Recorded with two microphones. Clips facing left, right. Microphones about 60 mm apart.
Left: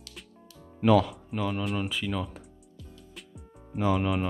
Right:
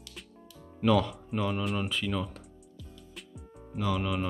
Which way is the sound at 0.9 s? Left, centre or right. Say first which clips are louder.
Left 4 dB; centre.